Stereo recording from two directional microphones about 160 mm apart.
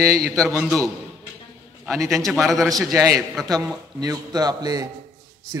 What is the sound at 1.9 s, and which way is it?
Speech, centre (ahead or behind).